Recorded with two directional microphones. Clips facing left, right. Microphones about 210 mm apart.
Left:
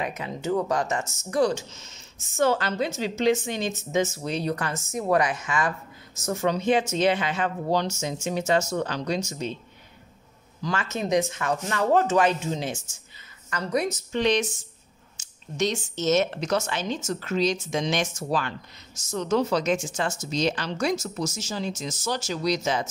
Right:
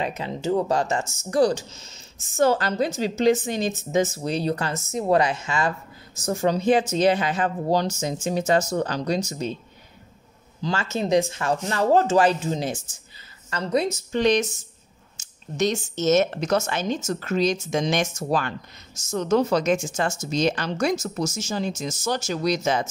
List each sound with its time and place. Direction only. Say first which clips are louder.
0.0 s speech: right 3 dB; 30° right (ahead or behind)
10.6 s speech: right 3 dB; 30° right (ahead or behind)
13.5 s a woman's voice: right 3 dB; 25° right (ahead or behind)
14.1 s speech: right 3 dB; 40° right (ahead or behind)